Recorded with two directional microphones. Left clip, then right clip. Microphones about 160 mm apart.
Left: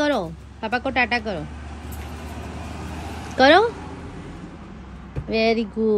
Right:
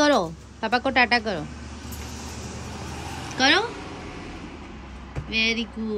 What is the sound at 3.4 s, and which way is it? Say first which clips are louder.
Speech: left 6 dB; 20° left (ahead or behind).